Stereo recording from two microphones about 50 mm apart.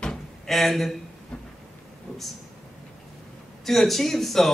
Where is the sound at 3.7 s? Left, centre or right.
Centre.